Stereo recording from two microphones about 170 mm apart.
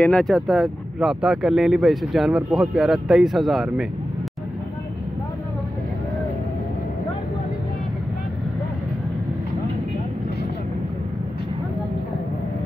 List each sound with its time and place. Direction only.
0.0 s speech: 5° left (ahead or behind)